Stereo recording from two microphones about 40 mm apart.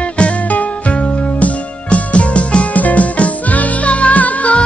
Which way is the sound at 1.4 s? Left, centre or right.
Left.